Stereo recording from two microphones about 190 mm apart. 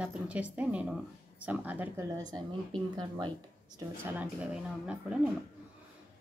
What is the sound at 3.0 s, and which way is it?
Speech, 25° right (ahead or behind).